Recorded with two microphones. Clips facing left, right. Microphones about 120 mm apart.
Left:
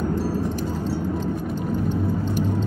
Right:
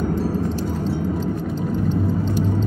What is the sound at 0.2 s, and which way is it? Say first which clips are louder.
Music: right 2 dB; 5° left (ahead or behind).